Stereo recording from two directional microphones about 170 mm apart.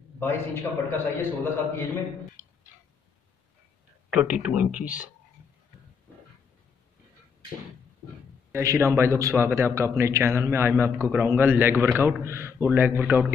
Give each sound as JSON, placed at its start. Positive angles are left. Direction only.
{"t": 0.2, "sound": "a man's voice", "side_deg": 15}
{"t": 4.1, "sound": "a man's voice", "side_deg": -5}
{"t": 8.5, "sound": "a man's voice", "side_deg": -15}